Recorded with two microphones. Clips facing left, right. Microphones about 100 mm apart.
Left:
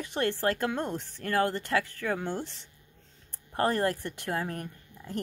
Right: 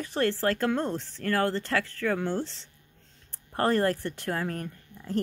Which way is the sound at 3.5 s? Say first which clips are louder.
Right 2 dB; 45° right (ahead or behind).